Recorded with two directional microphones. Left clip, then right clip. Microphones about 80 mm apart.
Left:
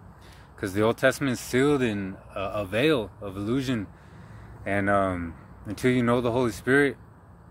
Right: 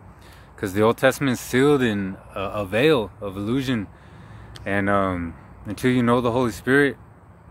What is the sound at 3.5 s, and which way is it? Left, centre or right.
Speech, right.